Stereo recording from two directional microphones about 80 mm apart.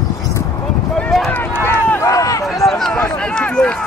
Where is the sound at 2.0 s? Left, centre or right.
Left.